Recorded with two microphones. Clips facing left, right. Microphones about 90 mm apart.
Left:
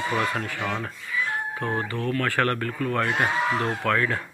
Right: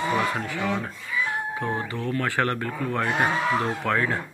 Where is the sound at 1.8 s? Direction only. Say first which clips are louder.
Left 1 dB; 20° right (ahead or behind).